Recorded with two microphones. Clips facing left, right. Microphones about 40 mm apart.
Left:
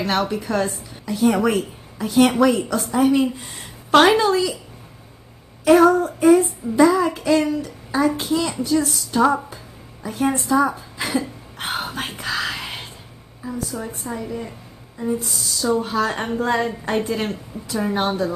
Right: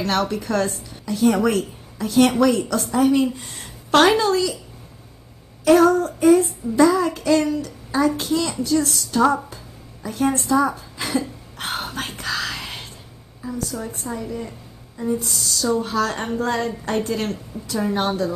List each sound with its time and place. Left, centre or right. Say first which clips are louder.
0.0 s a woman's voice: even; centre
5.7 s a woman's voice: left 1 dB; centre
10.0 s a sound: even; centre
13.4 s a woman's voice: even; centre